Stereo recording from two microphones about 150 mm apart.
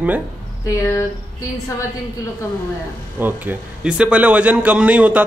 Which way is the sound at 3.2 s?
10° right (ahead or behind).